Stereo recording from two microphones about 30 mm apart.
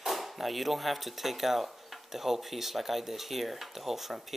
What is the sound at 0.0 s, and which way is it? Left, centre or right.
Speech, centre.